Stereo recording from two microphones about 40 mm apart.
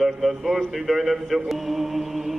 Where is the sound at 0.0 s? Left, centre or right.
Centre.